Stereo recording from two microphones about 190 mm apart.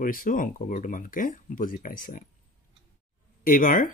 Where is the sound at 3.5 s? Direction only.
45° left (ahead or behind).